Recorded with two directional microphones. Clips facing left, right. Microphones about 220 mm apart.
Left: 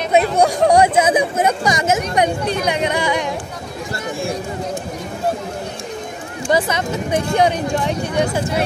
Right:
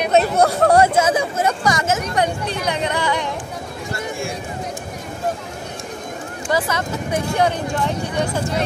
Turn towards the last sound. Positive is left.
turn(degrees=15)  # may be behind; listen again after turning